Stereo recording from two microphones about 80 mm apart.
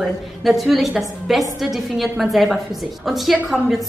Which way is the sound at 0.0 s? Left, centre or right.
Centre.